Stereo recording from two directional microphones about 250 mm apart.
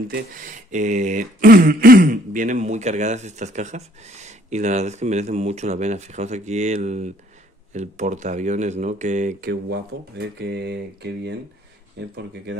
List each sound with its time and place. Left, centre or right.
0.1 s speech: right